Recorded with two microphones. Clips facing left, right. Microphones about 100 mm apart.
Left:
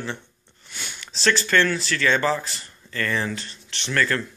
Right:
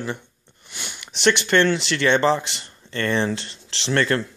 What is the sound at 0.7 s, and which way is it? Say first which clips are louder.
Sniff: even; 20° right (ahead or behind).